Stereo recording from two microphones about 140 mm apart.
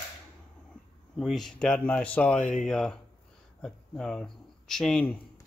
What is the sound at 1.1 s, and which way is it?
Speech, centre (ahead or behind).